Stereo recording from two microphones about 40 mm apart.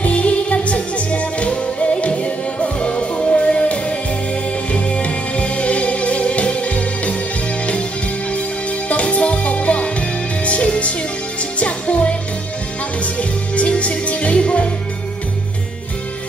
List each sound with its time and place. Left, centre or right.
0.0 s music: left
8.3 s music: left